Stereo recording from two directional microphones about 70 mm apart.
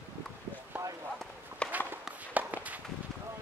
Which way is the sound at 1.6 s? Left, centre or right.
Right.